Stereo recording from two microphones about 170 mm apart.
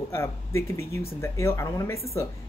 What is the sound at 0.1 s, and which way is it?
Speech, 15° left (ahead or behind).